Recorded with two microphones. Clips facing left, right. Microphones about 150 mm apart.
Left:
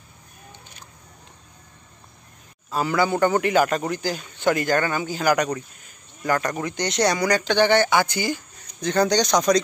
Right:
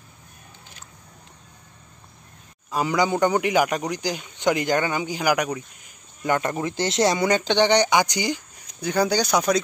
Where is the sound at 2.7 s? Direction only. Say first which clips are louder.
Even; 15° right (ahead or behind).